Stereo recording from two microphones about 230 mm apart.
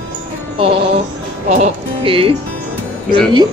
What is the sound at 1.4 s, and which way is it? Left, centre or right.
Speech, right.